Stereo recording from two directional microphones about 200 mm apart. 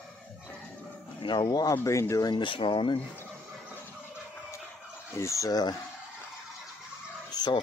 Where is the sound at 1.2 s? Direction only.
20° left (ahead or behind).